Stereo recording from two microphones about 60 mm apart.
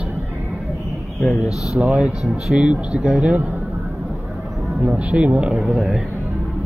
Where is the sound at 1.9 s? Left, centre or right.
Centre.